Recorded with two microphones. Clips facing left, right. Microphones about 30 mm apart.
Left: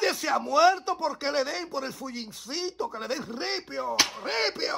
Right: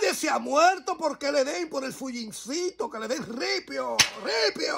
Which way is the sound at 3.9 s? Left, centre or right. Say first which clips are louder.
Right 2 dB; right.